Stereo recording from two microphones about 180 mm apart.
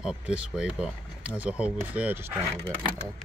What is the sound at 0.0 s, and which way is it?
Speech, 5° right (ahead or behind).